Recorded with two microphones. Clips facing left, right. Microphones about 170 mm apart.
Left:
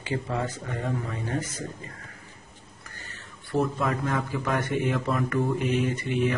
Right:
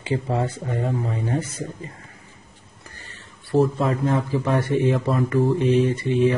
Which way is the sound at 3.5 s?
30° right (ahead or behind).